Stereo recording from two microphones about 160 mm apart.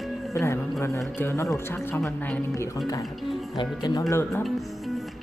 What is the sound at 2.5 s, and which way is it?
A woman's voice, 20° left (ahead or behind).